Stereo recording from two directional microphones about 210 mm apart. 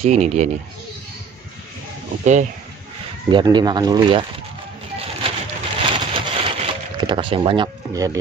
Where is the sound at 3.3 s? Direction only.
20° right (ahead or behind).